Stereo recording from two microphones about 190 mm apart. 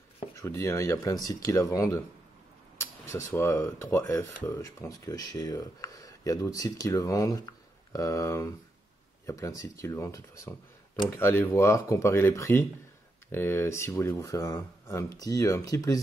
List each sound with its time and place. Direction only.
0.4 s speech: 15° left (ahead or behind)